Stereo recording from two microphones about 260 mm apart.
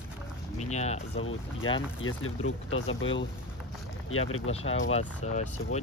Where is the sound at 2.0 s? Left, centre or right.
Left.